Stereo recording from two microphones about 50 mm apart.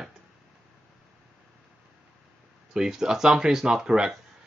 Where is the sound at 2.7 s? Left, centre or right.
Centre.